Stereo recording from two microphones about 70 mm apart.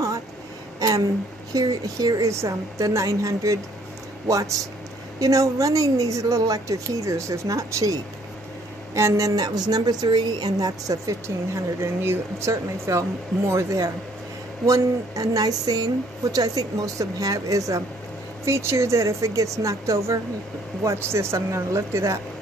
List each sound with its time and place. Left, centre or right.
0.7 s a sound: right
1.5 s a woman's voice: right
2.3 s a woman's voice: right
10.9 s a woman's voice: right
11.8 s a woman's voice: right
18.4 s a woman's voice: right